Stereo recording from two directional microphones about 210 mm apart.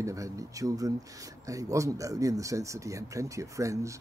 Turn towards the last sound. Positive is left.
turn(degrees=-15)  # may be behind; listen again after turning